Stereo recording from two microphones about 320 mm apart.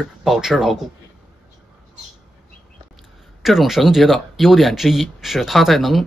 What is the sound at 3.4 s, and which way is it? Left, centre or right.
Speech, centre.